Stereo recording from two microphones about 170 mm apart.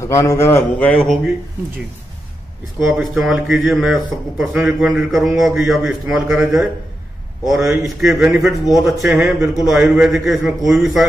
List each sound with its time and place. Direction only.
0.0 s a man's voice: 15° left (ahead or behind); by 1.3 s centre (ahead or behind)
2.8 s speech: centre (ahead or behind)